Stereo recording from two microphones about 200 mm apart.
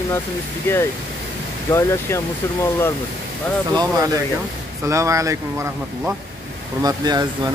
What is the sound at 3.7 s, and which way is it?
Speech, 15° right (ahead or behind).